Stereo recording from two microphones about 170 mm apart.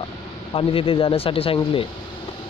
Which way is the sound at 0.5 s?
30° left (ahead or behind).